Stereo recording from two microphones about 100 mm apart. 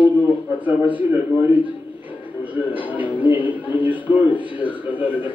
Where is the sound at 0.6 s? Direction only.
15° right (ahead or behind).